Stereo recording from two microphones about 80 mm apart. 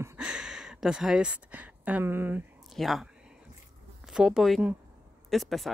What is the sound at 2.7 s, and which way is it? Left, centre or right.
Speech, centre.